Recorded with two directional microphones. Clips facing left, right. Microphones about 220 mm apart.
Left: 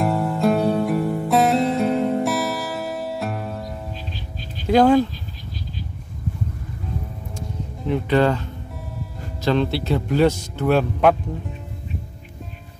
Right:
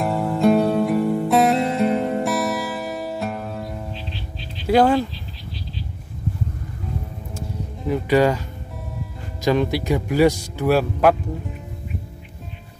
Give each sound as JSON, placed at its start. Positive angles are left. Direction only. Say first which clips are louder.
{"t": 0.0, "sound": "music", "louder": "right 1 dB", "side_deg": 0}
{"t": 3.9, "sound": "music", "louder": "even", "side_deg": 45}
{"t": 4.6, "sound": "speech", "louder": "left 2 dB", "side_deg": -5}
{"t": 7.3, "sound": "music", "louder": "right 2 dB", "side_deg": -5}
{"t": 9.4, "sound": "speech", "louder": "right 1 dB", "side_deg": -10}